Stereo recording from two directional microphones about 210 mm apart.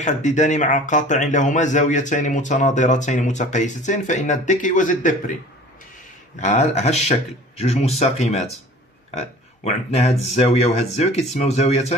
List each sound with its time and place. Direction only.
0.0 s speech: 35° left (ahead or behind)
6.3 s speech: 35° left (ahead or behind)
9.7 s speech: 30° left (ahead or behind)